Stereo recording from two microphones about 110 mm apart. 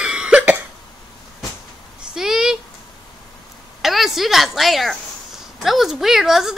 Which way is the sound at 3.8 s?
Centre (ahead or behind).